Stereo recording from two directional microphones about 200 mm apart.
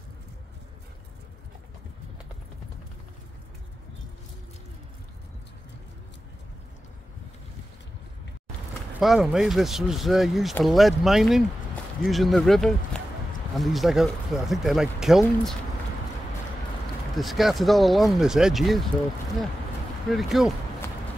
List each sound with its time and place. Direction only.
9.0 s speech: centre (ahead or behind)
17.2 s speech: centre (ahead or behind)
20.1 s speech: centre (ahead or behind)